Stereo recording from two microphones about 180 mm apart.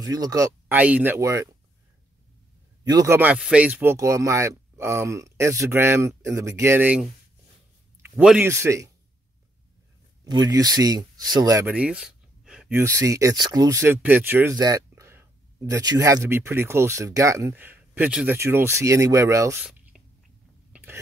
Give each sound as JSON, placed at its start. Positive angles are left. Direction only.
{"t": 0.0, "sound": "speech", "side_deg": -20}
{"t": 0.7, "sound": "speech", "side_deg": -10}
{"t": 2.9, "sound": "speech", "side_deg": -15}
{"t": 8.2, "sound": "speech", "side_deg": -5}
{"t": 8.5, "sound": "speech", "side_deg": -15}
{"t": 10.2, "sound": "speech", "side_deg": -25}
{"t": 11.6, "sound": "speech", "side_deg": -5}
{"t": 20.7, "sound": "biting", "side_deg": -10}